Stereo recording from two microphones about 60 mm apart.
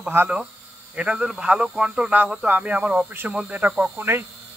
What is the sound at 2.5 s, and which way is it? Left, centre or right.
Speech, right.